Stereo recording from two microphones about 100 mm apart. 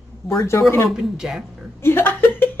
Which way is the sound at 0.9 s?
5° right (ahead or behind).